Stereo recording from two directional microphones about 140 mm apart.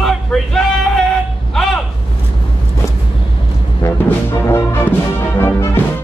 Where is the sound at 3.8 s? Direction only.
15° left (ahead or behind).